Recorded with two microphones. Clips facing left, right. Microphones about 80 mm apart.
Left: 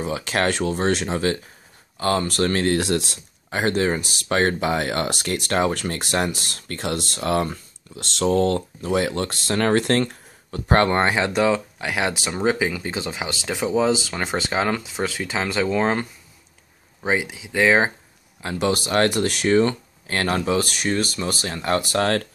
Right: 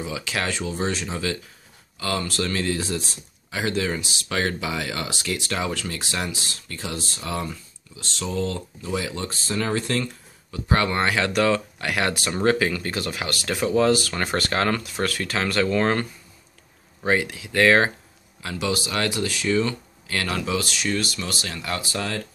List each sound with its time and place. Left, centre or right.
0.0 s speech: left
11.0 s speech: left
18.6 s speech: left
19.6 s speech: left